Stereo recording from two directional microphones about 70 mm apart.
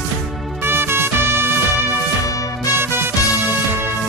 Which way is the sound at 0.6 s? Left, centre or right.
Right.